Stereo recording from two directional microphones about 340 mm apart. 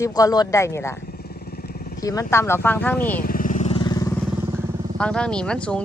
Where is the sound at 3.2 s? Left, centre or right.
Left.